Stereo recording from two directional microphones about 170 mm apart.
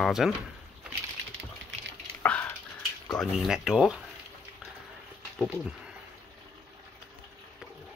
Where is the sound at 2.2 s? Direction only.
10° left (ahead or behind).